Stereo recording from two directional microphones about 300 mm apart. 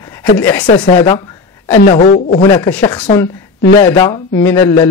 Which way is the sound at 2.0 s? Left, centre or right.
Left.